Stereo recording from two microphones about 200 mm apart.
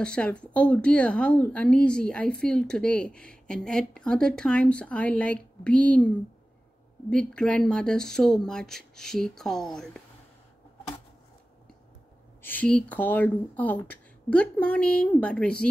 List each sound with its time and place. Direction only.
0.0 s a woman's voice: 5° left (ahead or behind)
7.1 s a woman's voice: 5° left (ahead or behind)
12.4 s speech: 10° left (ahead or behind)